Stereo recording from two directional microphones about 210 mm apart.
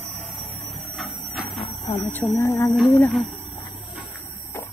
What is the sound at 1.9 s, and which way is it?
Speech, 10° left (ahead or behind).